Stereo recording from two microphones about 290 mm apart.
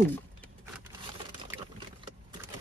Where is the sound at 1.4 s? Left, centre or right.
Centre.